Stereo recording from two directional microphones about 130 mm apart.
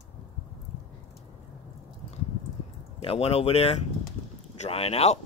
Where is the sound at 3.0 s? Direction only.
45° left (ahead or behind).